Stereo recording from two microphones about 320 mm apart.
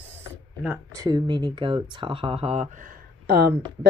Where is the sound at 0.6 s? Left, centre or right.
Centre.